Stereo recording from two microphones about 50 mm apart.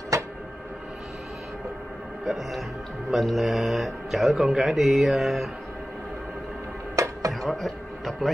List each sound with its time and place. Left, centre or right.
2.2 s speech: centre
7.0 s music: right
7.4 s a man's voice: centre